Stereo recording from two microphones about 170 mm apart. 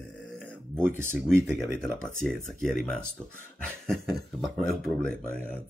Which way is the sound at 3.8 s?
Centre (ahead or behind).